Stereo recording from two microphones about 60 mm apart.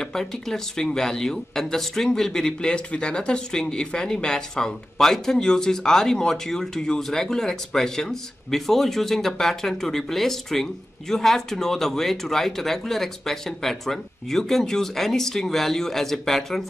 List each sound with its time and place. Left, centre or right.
0.0 s speech: centre